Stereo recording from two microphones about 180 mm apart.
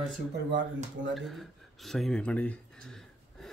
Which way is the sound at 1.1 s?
Centre (ahead or behind).